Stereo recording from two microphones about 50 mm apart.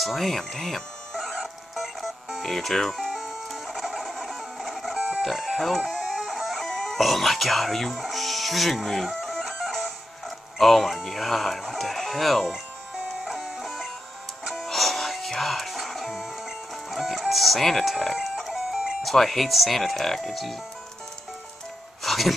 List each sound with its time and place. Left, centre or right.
0.0 s printer: centre
2.4 s music: centre
4.9 s music: centre
5.2 s speech: centre
5.9 s music: centre
11.0 s speech: centre
13.1 s music: centre
18.7 s music: centre
19.0 s speech: centre
22.0 s music: centre